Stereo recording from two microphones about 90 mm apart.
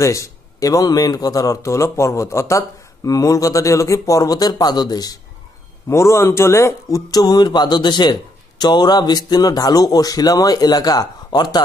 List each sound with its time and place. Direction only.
0.0 s a man's voice: 35° left (ahead or behind)
5.9 s a man's voice: 30° left (ahead or behind)
7.1 s a man's voice: 50° left (ahead or behind)